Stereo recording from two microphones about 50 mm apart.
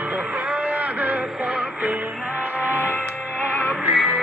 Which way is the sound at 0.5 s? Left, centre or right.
Right.